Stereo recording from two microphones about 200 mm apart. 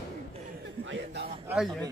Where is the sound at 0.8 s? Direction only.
70° right (ahead or behind).